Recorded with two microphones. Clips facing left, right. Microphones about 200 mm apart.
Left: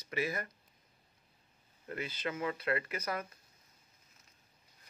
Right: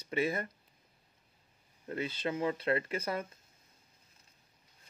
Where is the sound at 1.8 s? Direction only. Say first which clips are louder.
Right 4 dB; 25° right (ahead or behind).